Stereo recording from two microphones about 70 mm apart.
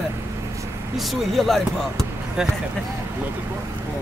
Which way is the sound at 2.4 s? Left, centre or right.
Centre.